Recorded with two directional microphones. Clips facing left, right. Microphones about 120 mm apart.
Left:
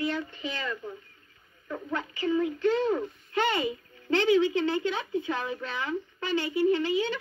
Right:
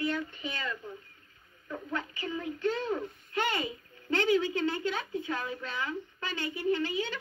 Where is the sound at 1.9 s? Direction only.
25° left (ahead or behind).